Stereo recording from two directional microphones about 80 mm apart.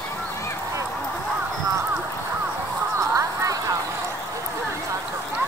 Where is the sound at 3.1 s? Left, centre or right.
Right.